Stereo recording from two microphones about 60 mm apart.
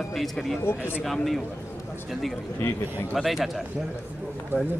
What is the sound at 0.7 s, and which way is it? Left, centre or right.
Speech, left.